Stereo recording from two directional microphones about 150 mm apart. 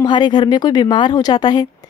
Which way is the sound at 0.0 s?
30° left (ahead or behind).